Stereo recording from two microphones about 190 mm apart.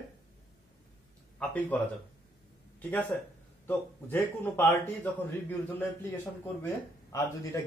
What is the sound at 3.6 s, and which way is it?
Speech, 10° left (ahead or behind).